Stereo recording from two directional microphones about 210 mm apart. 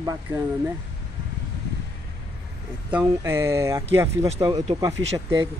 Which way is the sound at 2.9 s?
10° right (ahead or behind).